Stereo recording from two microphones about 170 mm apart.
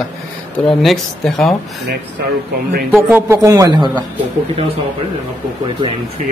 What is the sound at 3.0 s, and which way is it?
Speech, 10° right (ahead or behind).